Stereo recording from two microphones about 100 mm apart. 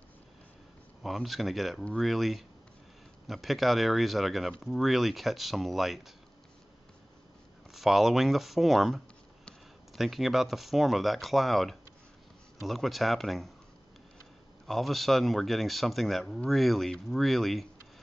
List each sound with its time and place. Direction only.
1.0 s speech: centre (ahead or behind)
7.7 s speech: centre (ahead or behind)
14.7 s speech: centre (ahead or behind)